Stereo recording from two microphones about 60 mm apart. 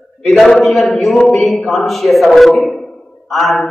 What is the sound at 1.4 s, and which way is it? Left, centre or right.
A man's voice, centre.